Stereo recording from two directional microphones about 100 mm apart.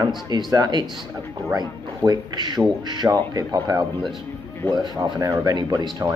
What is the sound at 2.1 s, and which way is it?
Speech, 45° right (ahead or behind).